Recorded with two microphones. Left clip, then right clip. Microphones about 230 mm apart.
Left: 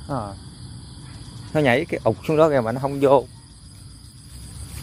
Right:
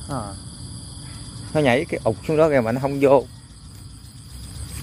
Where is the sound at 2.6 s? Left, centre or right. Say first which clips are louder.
Right 1 dB; centre.